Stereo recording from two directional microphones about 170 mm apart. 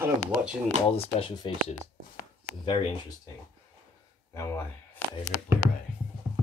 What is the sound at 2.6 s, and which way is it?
Speech, 30° left (ahead or behind).